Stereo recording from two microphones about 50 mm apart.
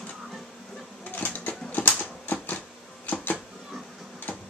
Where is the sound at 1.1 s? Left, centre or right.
Left.